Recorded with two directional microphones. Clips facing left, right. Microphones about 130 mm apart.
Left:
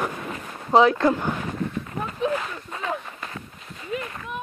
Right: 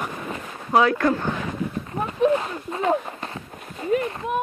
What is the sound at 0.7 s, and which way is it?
Speech, 20° left (ahead or behind).